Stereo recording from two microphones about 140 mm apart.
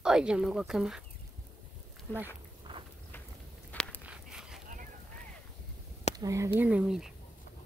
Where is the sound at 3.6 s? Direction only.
10° left (ahead or behind).